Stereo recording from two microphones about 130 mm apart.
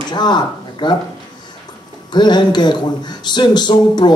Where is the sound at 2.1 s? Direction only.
35° left (ahead or behind).